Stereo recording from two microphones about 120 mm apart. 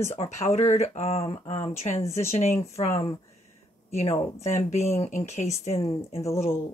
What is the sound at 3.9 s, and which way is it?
Speech, 65° left (ahead or behind).